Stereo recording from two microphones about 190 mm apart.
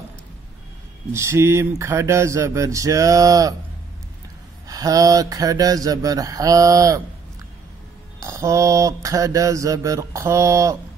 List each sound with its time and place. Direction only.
1.1 s mantra: 15° right (ahead or behind)
4.6 s mantra: 20° right (ahead or behind)
8.2 s mantra: 15° right (ahead or behind)